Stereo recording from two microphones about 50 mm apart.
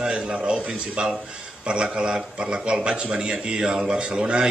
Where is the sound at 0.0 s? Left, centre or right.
Centre.